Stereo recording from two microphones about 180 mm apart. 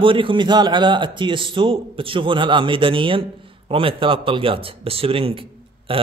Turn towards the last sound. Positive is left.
turn(degrees=-30)  # may be behind; listen again after turning